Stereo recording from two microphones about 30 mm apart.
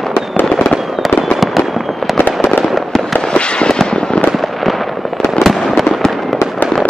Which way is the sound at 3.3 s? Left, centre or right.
Left.